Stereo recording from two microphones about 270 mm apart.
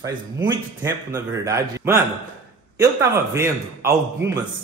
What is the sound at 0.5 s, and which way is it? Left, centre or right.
Speech, centre.